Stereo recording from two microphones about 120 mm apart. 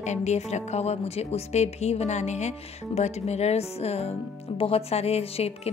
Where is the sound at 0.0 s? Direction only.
70° left (ahead or behind).